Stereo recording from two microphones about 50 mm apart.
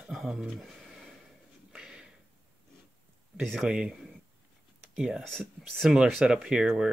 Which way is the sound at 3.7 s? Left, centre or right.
Centre.